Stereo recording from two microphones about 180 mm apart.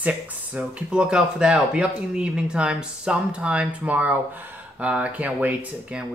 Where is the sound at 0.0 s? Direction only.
10° right (ahead or behind).